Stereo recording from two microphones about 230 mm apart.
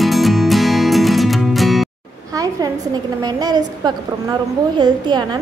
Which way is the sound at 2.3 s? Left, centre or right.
Centre.